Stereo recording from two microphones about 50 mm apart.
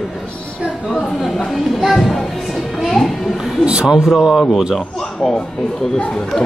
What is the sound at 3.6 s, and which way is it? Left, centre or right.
Speech, centre.